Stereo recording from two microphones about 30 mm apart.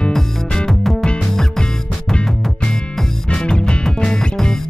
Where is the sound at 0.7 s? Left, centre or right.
Centre.